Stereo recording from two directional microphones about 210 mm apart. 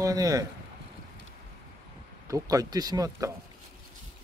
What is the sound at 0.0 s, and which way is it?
Speech, 15° right (ahead or behind).